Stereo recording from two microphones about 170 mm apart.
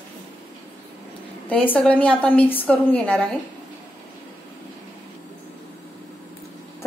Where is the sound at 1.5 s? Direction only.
10° left (ahead or behind).